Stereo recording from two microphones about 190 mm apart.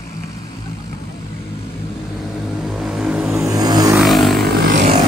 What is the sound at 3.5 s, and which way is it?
Vehicle, 20° right (ahead or behind).